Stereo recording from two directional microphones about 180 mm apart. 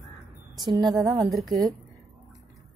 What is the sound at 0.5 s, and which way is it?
Speech, 25° right (ahead or behind).